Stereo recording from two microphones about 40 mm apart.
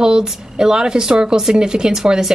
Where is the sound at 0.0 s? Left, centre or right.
Centre.